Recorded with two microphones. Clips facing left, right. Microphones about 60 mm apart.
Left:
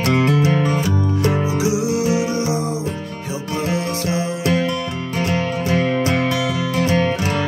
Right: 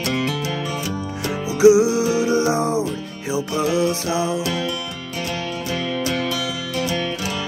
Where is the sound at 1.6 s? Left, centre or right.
Right.